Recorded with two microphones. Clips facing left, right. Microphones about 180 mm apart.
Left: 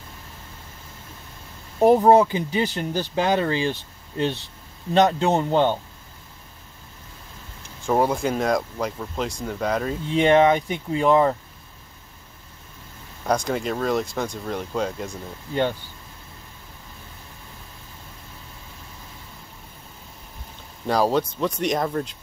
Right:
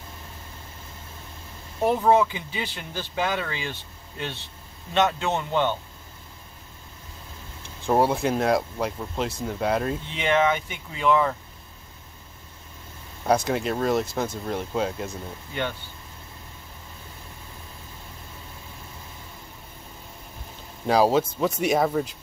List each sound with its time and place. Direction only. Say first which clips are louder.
1.8 s speech: left 5 dB; 40° left (ahead or behind)
4.9 s speech: left 5 dB; 40° left (ahead or behind)
7.8 s speech: even; 5° right (ahead or behind)
10.1 s speech: left 7 dB; 40° left (ahead or behind)
13.2 s speech: right 1 dB; 5° right (ahead or behind)
20.8 s speech: right 1 dB; 10° right (ahead or behind)